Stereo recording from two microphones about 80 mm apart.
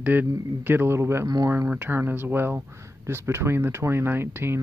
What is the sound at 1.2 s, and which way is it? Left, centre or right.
Speech, right.